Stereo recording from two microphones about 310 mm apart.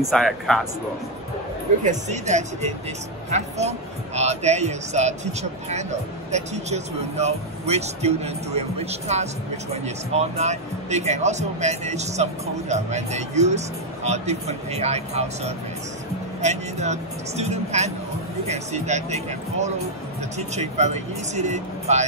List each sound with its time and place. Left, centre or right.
0.1 s a man's voice: centre
1.9 s speech: right